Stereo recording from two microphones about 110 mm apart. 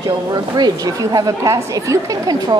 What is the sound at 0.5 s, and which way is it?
A woman's voice, 40° right (ahead or behind).